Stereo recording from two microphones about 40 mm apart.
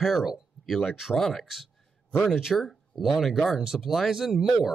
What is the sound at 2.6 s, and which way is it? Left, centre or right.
Speech, centre.